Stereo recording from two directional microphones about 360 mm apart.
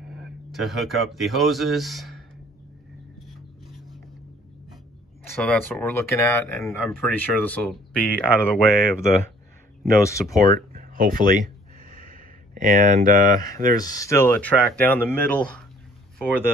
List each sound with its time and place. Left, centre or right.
0.2 s speech: centre
3.3 s music: centre
5.3 s speech: centre
10.5 s speech: right
12.1 s a sound: right
13.7 s speech: centre